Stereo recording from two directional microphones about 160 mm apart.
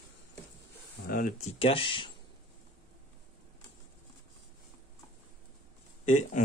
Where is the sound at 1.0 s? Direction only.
65° left (ahead or behind).